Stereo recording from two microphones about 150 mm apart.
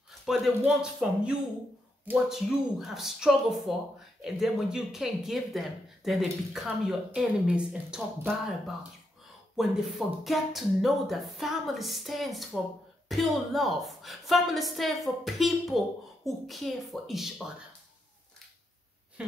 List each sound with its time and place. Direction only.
0.7 s speech: 5° right (ahead or behind)
19.2 s speech: 5° right (ahead or behind)